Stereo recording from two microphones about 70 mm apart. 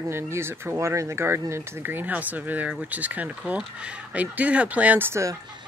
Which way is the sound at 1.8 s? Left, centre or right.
Right.